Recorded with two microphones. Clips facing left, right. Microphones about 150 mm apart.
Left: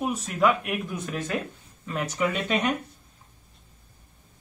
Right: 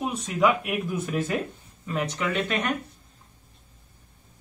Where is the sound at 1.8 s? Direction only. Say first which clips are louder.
Left 1 dB; 5° left (ahead or behind).